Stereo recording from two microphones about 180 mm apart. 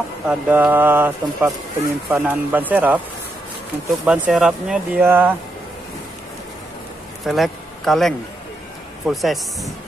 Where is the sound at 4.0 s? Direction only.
5° right (ahead or behind).